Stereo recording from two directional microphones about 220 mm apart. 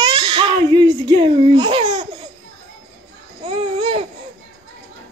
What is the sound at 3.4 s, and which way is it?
Babbling, 25° right (ahead or behind).